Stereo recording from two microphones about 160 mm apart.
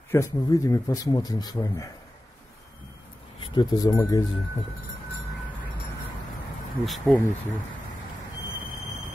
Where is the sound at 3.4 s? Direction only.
25° left (ahead or behind).